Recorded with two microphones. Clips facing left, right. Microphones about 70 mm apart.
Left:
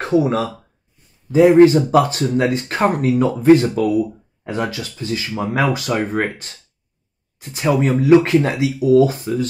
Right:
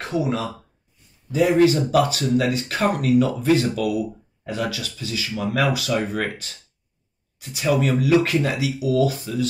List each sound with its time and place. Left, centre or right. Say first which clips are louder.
0.0 s speech: left 7 dB; left